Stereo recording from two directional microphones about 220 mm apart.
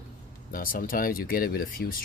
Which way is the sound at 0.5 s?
40° left (ahead or behind).